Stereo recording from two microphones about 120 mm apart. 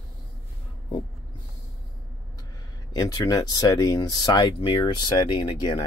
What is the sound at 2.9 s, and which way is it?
Speech, 30° left (ahead or behind).